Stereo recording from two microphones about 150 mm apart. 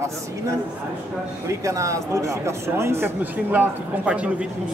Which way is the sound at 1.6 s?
20° right (ahead or behind).